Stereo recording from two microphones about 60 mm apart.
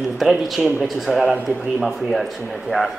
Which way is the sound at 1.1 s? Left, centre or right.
Centre.